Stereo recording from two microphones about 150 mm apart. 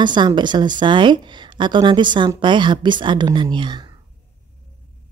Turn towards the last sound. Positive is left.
turn(degrees=-30)  # may be behind; listen again after turning